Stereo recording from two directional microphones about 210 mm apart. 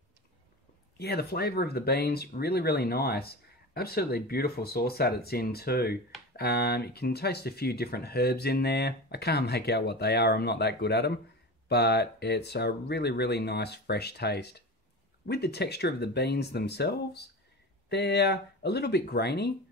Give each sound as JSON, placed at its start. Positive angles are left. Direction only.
{"t": 0.9, "sound": "speech", "side_deg": 50}